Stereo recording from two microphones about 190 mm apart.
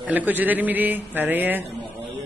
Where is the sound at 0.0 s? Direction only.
10° right (ahead or behind).